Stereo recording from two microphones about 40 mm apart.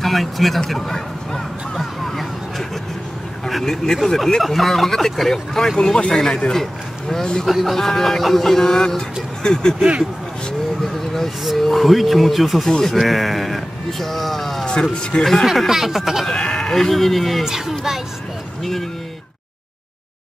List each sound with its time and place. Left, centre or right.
0.0 s a man's voice: centre
3.6 s speech: centre
10.9 s a sound: centre
11.4 s speech: centre
12.6 s speech: centre
12.9 s speech: centre
14.7 s speech: left
15.4 s speech: centre
16.3 s speech: centre
17.5 s speech: centre
18.6 s speech: centre